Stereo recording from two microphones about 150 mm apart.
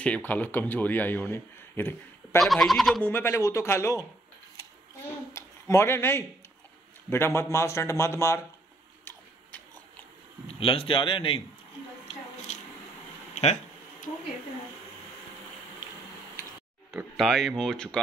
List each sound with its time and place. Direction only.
0.0 s speech: 10° left (ahead or behind)
2.4 s speech: centre (ahead or behind)
3.0 s speech: 15° left (ahead or behind)
5.3 s speech: 20° left (ahead or behind)
10.5 s a man's voice: 40° left (ahead or behind)
12.5 s a sound: 50° left (ahead or behind)
17.2 s speech: centre (ahead or behind)